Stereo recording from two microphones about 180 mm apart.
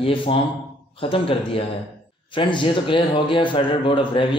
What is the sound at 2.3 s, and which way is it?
Speech, 25° left (ahead or behind).